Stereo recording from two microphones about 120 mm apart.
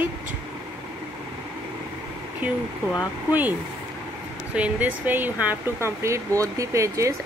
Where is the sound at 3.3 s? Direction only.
15° right (ahead or behind).